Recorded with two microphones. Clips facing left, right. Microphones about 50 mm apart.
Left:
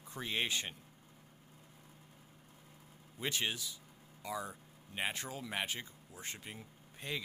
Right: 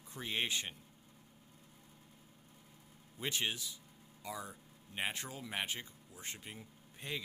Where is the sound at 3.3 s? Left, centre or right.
Centre.